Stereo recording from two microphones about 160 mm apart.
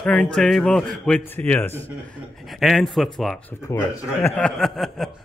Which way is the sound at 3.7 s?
20° left (ahead or behind).